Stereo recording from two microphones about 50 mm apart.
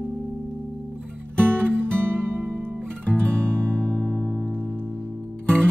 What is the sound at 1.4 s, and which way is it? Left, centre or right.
Music, right.